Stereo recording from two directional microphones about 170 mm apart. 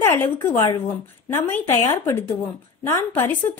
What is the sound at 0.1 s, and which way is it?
A woman's voice, 15° left (ahead or behind).